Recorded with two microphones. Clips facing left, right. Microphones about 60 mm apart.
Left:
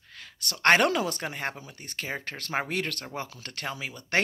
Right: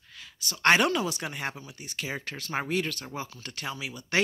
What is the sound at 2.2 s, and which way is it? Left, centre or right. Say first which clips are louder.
Speech: left 1 dB; left.